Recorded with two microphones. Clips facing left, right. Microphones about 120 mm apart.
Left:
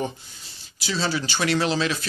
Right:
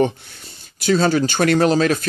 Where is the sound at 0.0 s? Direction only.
60° right (ahead or behind).